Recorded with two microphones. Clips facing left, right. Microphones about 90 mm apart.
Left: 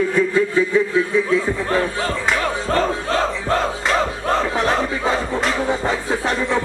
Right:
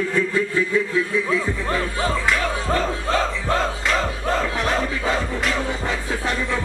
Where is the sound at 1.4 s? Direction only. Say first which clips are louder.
Left 4 dB; 25° left (ahead or behind).